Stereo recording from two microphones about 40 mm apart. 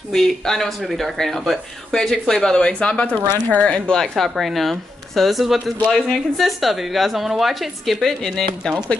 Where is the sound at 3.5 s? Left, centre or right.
Left.